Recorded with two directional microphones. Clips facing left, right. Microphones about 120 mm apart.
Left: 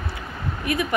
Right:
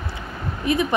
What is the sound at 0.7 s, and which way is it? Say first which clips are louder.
Speech: right 4 dB; 25° right (ahead or behind).